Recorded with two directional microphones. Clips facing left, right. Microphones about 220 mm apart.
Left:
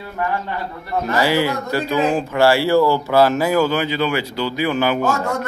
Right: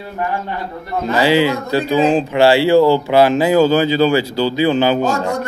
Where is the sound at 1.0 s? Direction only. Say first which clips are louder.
Right 5 dB; 20° right (ahead or behind).